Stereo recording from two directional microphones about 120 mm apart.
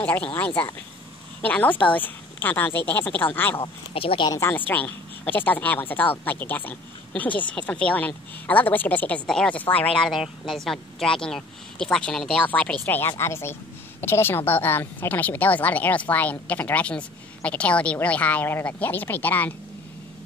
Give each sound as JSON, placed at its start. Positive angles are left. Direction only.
{"t": 0.0, "sound": "a woman's voice", "side_deg": 10}
{"t": 3.6, "sound": "speech", "side_deg": 50}
{"t": 4.3, "sound": "a woman's voice", "side_deg": 20}